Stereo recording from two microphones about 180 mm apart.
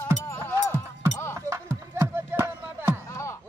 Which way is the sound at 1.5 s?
15° right (ahead or behind).